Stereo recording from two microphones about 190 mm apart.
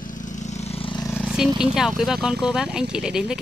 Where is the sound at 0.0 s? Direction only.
40° left (ahead or behind); by 1.1 s 25° left (ahead or behind).